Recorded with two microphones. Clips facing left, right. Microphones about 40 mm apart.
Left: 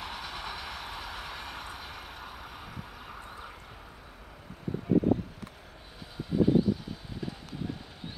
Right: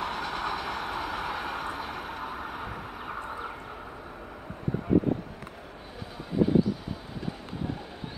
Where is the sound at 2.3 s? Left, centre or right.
Right.